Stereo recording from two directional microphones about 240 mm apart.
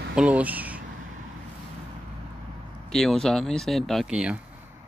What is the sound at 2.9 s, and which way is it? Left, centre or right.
Speech, centre.